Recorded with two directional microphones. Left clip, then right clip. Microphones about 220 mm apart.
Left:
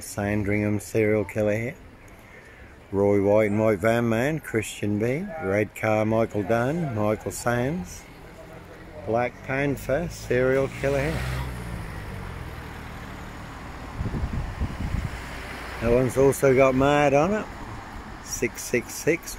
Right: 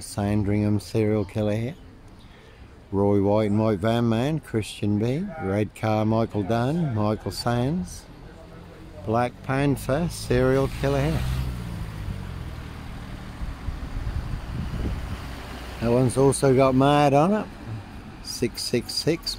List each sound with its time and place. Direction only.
0.1 s speech: 15° right (ahead or behind)
2.9 s speech: 10° right (ahead or behind)
9.1 s speech: 35° right (ahead or behind)
11.1 s speech: 45° right (ahead or behind)
15.4 s vehicle: 50° right (ahead or behind)
16.2 s speech: 15° right (ahead or behind)
18.7 s speech: 15° right (ahead or behind)